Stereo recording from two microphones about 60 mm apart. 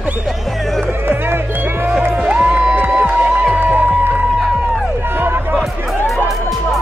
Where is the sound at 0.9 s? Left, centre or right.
Right.